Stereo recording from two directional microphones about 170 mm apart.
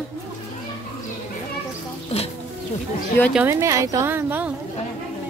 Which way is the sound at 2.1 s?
35° left (ahead or behind).